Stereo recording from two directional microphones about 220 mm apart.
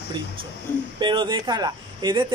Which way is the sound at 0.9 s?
20° right (ahead or behind).